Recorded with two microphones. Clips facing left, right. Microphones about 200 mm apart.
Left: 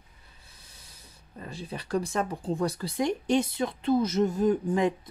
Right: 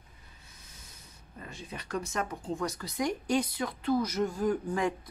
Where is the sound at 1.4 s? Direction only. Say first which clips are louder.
Left 5 dB; 35° left (ahead or behind).